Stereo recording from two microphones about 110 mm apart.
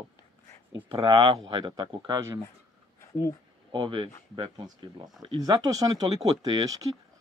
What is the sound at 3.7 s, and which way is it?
Speech, 45° right (ahead or behind).